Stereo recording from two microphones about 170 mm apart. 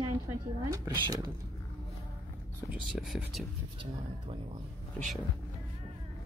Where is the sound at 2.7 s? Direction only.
Centre (ahead or behind).